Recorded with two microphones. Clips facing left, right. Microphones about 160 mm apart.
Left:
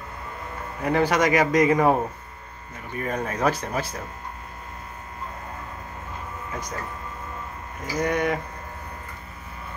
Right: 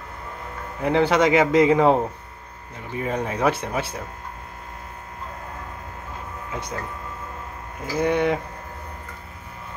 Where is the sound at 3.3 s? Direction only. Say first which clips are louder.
Right 1 dB; 15° right (ahead or behind).